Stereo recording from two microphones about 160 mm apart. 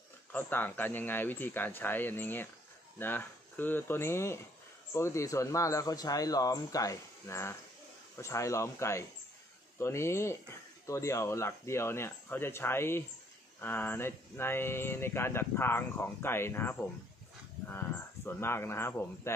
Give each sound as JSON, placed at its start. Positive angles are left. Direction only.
{"t": 0.3, "sound": "speech", "side_deg": 10}